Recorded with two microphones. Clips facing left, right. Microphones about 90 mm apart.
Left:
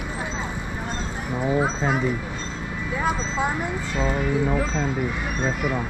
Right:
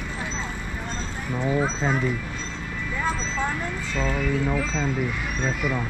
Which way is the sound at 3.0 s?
15° left (ahead or behind).